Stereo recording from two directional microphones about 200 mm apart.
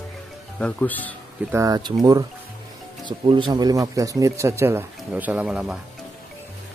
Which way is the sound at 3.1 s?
25° right (ahead or behind).